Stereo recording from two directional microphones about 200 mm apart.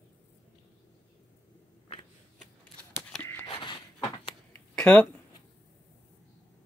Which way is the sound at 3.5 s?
25° left (ahead or behind).